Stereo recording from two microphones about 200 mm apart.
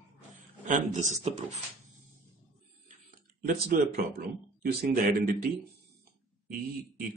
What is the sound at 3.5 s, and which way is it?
Speech, 45° right (ahead or behind).